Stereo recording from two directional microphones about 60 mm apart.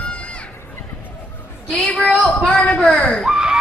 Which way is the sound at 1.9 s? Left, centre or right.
Left.